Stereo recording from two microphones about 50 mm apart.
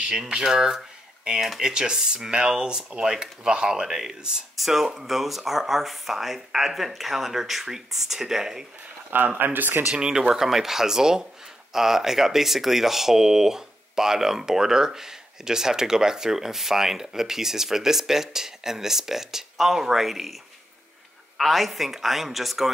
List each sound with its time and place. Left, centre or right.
0.0 s speech: centre
9.4 s speech: right
9.8 s speech: centre
21.4 s speech: centre